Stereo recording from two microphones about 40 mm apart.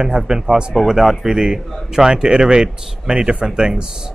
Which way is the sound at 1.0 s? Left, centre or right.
Centre.